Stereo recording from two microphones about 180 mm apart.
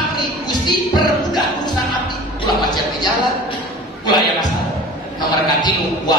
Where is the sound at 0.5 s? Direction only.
25° left (ahead or behind).